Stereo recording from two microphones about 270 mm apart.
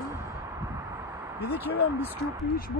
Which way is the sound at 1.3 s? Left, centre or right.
Left.